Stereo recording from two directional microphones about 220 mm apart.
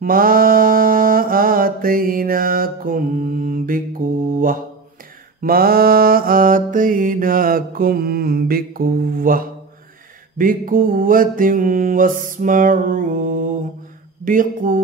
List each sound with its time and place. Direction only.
0.0 s mantra: 40° right (ahead or behind)